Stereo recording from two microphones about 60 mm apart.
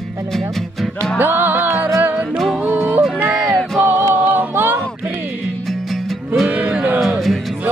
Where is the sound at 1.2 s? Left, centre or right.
Right.